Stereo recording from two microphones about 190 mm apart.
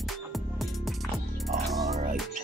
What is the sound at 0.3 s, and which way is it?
Music, centre (ahead or behind).